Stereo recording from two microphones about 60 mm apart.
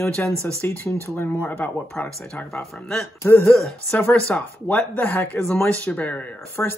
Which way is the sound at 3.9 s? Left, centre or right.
Left.